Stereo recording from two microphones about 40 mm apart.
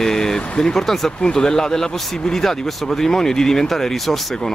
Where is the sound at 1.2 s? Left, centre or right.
Centre.